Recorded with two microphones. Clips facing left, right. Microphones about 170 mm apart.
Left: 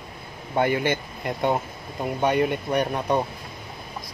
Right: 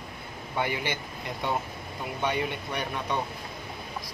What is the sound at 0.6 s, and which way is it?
Speech, 50° left (ahead or behind).